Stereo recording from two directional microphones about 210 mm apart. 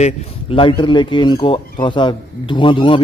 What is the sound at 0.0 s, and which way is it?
Speech, 30° left (ahead or behind).